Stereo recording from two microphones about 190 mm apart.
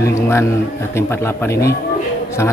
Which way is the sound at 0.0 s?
15° left (ahead or behind).